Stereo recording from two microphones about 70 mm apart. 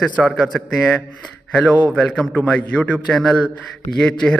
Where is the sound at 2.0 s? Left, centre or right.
Centre.